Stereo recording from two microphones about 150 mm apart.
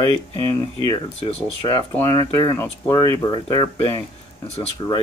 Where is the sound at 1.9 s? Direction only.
20° left (ahead or behind).